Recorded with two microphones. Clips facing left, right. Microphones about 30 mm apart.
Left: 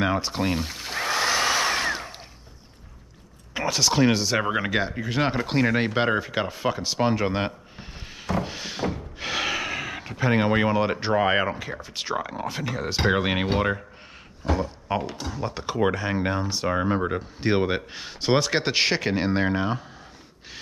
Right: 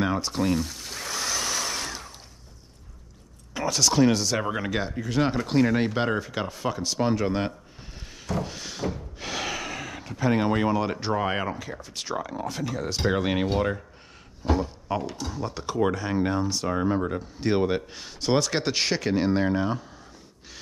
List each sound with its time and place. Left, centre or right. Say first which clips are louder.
0.0 s a sound: left 1 dB; left
3.5 s speech: even; centre
8.2 s a sound: left 3 dB; left
13.0 s speech: left 2 dB; left
14.4 s speech: even; centre
14.9 s speech: left 2 dB; left